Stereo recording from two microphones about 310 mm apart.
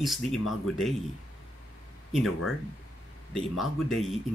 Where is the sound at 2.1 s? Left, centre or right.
Centre.